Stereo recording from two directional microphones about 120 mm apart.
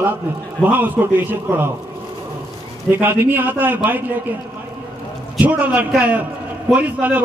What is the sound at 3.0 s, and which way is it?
A man's voice, 15° right (ahead or behind).